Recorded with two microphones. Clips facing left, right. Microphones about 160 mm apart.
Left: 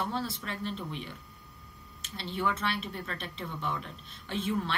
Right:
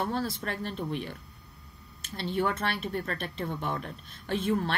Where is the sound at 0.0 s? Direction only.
50° right (ahead or behind).